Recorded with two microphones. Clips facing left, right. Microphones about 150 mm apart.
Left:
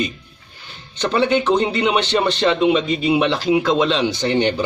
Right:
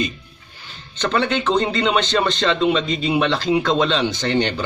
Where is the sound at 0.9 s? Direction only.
15° left (ahead or behind).